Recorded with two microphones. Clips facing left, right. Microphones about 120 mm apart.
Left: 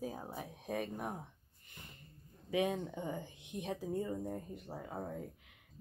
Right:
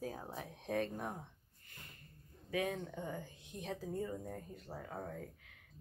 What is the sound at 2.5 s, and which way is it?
Speech, 20° left (ahead or behind).